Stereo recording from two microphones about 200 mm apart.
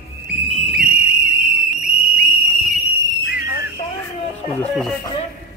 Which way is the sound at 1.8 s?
45° right (ahead or behind).